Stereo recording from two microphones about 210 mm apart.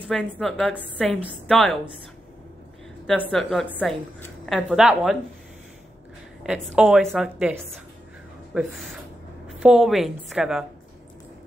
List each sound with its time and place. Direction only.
0.1 s a woman's voice: centre (ahead or behind)
3.3 s a woman's voice: centre (ahead or behind)
6.4 s a woman's voice: 5° right (ahead or behind)
9.5 s a woman's voice: centre (ahead or behind)